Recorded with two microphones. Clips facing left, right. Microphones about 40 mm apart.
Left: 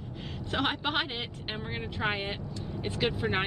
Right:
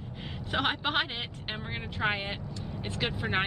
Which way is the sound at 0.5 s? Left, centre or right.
Centre.